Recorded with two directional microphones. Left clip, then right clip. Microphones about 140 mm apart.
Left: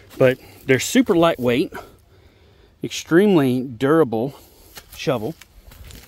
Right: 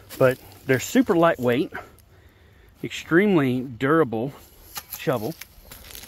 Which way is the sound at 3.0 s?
45° left (ahead or behind).